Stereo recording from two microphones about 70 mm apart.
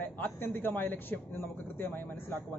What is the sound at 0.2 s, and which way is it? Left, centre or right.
A man's voice, left.